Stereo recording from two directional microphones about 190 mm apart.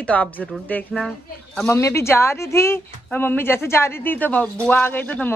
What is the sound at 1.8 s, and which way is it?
A woman's voice, 15° left (ahead or behind).